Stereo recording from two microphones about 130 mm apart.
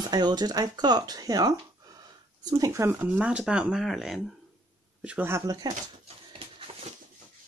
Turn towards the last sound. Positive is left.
turn(degrees=-55)  # may be behind; listen again after turning